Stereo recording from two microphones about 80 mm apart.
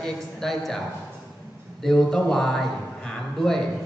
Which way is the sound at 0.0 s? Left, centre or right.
Centre.